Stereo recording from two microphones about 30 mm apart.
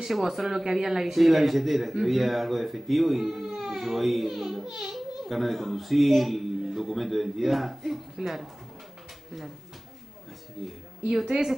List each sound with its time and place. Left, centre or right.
0.0 s a man's voice: centre
10.6 s a child's voice: centre